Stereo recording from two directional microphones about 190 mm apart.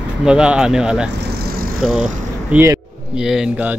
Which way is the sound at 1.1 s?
60° right (ahead or behind).